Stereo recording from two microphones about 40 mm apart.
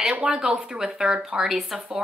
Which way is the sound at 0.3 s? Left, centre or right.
Centre.